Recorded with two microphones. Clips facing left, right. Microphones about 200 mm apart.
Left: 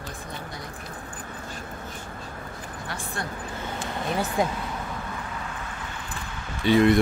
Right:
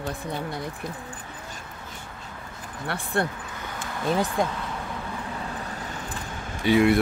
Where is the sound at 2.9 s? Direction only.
60° right (ahead or behind).